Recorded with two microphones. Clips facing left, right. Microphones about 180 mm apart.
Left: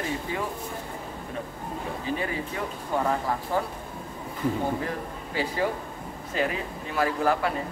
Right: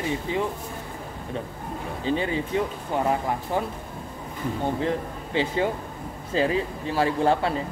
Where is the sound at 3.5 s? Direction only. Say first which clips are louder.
Right 1 dB; 20° right (ahead or behind).